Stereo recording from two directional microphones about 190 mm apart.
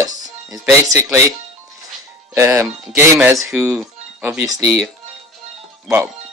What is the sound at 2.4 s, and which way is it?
Speech, 15° right (ahead or behind).